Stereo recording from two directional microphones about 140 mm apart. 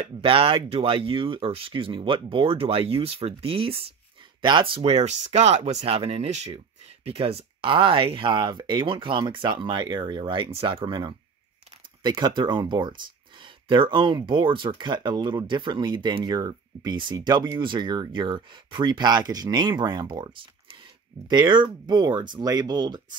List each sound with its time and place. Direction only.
0.0 s speech: 40° right (ahead or behind)